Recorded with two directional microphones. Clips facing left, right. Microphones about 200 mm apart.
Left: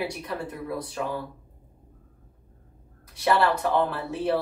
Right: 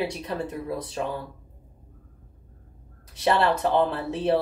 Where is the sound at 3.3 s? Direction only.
20° right (ahead or behind).